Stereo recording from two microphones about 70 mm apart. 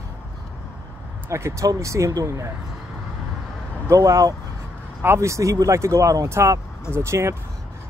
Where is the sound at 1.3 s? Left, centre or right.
Right.